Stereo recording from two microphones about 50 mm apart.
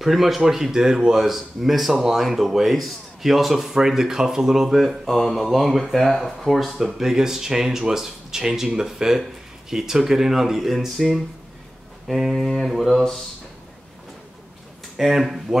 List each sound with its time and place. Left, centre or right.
0.0 s speech: centre
15.0 s speech: centre